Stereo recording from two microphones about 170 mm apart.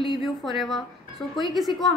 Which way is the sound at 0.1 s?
Centre (ahead or behind).